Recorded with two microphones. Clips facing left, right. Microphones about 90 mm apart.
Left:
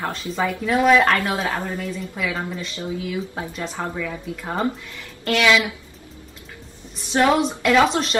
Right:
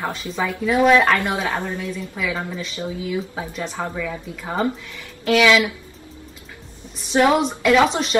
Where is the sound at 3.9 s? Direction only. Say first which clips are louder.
Even; centre (ahead or behind).